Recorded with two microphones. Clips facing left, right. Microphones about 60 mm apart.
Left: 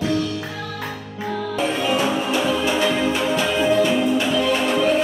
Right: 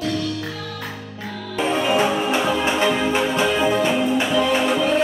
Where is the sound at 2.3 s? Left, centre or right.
Right.